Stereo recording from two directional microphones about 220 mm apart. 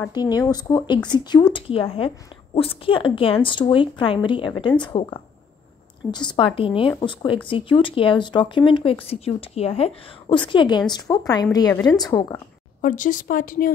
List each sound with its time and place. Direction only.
0.0 s a woman's voice: 20° left (ahead or behind)
12.8 s speech: 35° left (ahead or behind)